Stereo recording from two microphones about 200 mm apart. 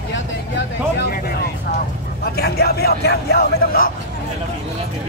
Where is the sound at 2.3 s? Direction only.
50° left (ahead or behind).